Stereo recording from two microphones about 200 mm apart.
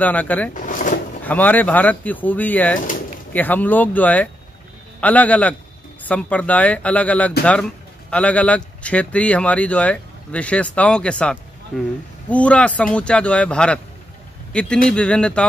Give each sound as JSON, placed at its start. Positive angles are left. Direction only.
{"t": 0.0, "sound": "speech", "side_deg": 10}
{"t": 0.6, "sound": "pigeon", "side_deg": 40}
{"t": 1.2, "sound": "a man's voice", "side_deg": 10}